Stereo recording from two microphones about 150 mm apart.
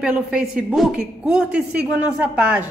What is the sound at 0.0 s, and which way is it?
Speech, 5° right (ahead or behind).